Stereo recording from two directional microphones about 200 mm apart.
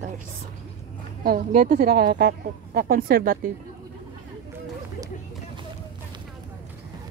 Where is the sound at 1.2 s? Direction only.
45° right (ahead or behind).